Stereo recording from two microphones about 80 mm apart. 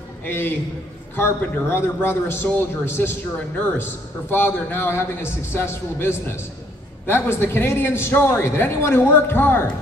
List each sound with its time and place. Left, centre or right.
0.2 s a man's voice: left